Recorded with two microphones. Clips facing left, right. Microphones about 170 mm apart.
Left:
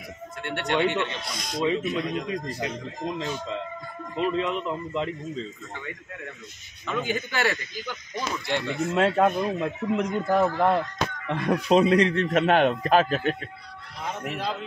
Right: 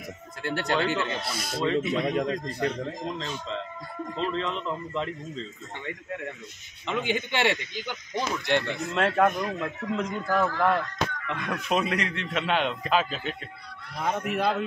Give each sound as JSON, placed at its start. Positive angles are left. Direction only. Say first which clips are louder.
{"t": 0.4, "sound": "speech", "louder": "left 2 dB", "side_deg": -35}
{"t": 1.3, "sound": "speech", "louder": "right 1 dB", "side_deg": -5}
{"t": 1.8, "sound": "speech", "louder": "right 2 dB", "side_deg": -65}
{"t": 4.2, "sound": "speech", "louder": "left 4 dB", "side_deg": 10}
{"t": 6.9, "sound": "speech", "louder": "even", "side_deg": -25}
{"t": 8.6, "sound": "speech", "louder": "left 4 dB", "side_deg": 15}
{"t": 13.9, "sound": "speech", "louder": "right 4 dB", "side_deg": -55}